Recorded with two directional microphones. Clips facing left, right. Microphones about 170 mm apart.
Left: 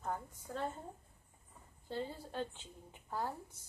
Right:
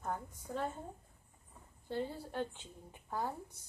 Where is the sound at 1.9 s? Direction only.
15° right (ahead or behind).